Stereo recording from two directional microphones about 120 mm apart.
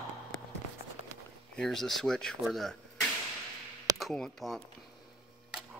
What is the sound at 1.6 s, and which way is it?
Speech, 5° left (ahead or behind).